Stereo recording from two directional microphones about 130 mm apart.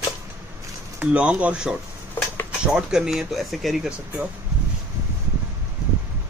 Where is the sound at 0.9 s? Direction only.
10° right (ahead or behind).